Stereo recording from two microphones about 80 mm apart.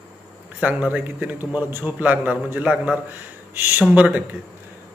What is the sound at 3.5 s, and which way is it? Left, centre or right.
Speech, right.